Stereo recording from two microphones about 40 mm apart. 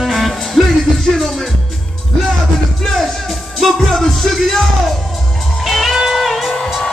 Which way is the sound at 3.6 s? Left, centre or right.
Centre.